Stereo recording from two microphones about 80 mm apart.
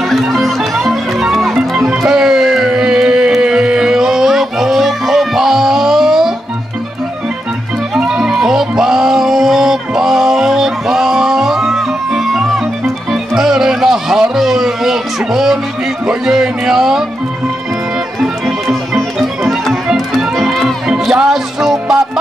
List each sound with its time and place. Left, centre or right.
0.1 s music: centre
7.9 s music: centre
18.4 s music: centre